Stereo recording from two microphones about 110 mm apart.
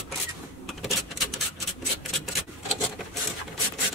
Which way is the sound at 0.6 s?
Centre (ahead or behind).